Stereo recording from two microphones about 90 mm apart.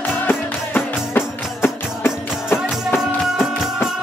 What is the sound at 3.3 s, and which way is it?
Music, 5° right (ahead or behind).